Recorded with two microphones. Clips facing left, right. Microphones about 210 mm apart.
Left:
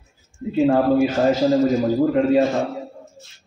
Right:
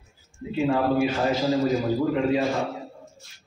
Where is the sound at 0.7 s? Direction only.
45° left (ahead or behind).